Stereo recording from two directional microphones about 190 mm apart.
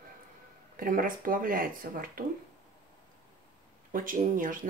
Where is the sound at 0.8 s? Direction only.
50° right (ahead or behind).